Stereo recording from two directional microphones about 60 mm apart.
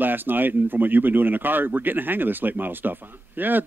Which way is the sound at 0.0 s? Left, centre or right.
Right.